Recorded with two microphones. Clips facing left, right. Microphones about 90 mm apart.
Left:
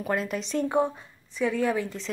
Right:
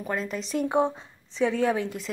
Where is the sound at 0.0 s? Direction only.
5° left (ahead or behind).